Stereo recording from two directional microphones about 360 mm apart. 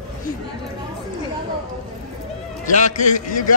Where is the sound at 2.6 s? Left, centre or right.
Centre.